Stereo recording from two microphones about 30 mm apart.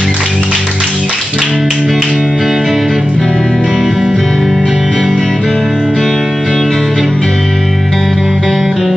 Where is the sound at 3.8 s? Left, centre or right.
Centre.